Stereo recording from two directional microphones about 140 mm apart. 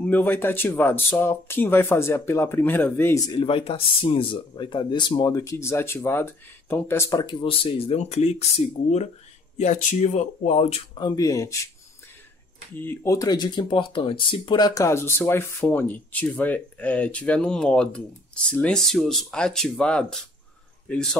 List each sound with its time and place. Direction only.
0.0 s speech: 15° left (ahead or behind)
3.3 s speech: 40° left (ahead or behind); by 7.3 s 25° left (ahead or behind)
7.4 s speech: 45° left (ahead or behind)
9.6 s speech: 60° left (ahead or behind)
11.0 s speech: 30° left (ahead or behind)
12.7 s speech: 15° left (ahead or behind)